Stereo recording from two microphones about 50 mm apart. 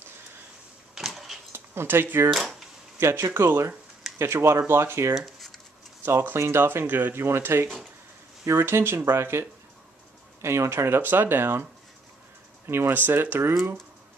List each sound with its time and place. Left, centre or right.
0.9 s a sound: centre
1.5 s speech: right
3.0 s speech: right
5.1 s speech: centre
6.0 s speech: right
7.2 s speech: right
10.4 s speech: right
12.6 s speech: right
12.9 s speech: right